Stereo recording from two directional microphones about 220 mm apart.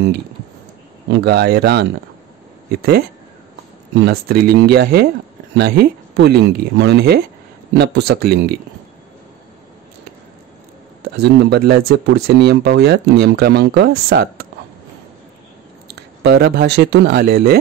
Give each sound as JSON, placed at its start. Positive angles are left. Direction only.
{"t": 1.1, "sound": "speech", "side_deg": -45}
{"t": 4.0, "sound": "speech", "side_deg": -45}
{"t": 11.1, "sound": "speech", "side_deg": -45}
{"t": 15.9, "sound": "speech", "side_deg": -50}